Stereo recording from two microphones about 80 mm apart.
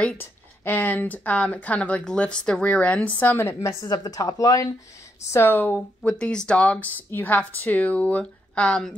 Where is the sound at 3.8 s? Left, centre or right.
Left.